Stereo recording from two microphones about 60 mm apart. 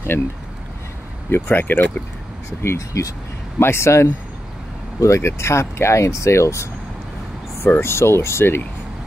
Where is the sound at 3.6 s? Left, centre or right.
Left.